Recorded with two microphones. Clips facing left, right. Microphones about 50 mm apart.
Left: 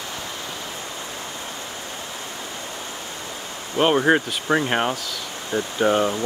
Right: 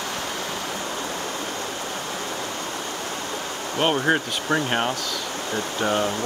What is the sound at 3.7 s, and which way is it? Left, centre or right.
Speech, centre.